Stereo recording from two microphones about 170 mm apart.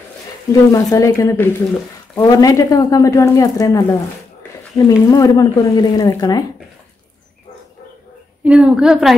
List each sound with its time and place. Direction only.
0.5 s speech: 20° left (ahead or behind)
8.5 s a woman's voice: 5° right (ahead or behind)